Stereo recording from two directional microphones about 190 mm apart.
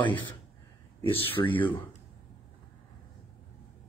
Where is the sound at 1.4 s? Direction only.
20° left (ahead or behind).